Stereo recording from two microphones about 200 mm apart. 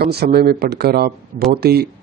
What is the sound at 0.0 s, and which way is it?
Speech, 55° right (ahead or behind).